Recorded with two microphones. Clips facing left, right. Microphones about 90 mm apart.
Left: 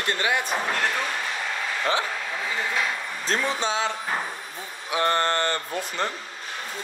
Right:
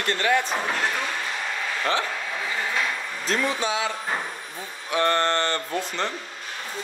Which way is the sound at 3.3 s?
30° left (ahead or behind).